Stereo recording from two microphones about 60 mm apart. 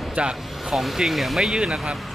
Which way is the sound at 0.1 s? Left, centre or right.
Centre.